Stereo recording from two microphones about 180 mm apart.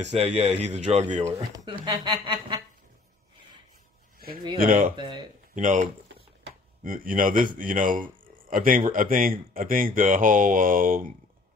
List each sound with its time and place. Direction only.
0.0 s speech: 35° right (ahead or behind)
1.6 s a sound: 25° right (ahead or behind)
4.6 s speech: 50° right (ahead or behind)
4.9 s speech: 25° right (ahead or behind)
5.5 s speech: 45° right (ahead or behind)